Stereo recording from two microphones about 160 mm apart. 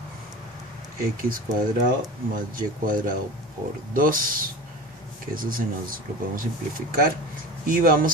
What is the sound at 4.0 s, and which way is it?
Speech, 60° right (ahead or behind).